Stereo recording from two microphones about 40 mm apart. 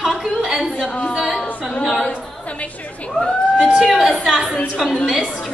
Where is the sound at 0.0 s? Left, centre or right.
Centre.